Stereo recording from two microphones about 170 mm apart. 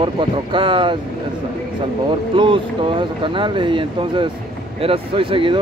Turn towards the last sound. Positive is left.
turn(degrees=-30)  # may be behind; listen again after turning